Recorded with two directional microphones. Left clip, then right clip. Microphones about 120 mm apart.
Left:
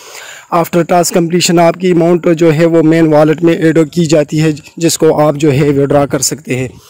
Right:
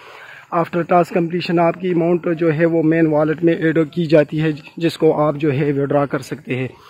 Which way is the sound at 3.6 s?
90° left.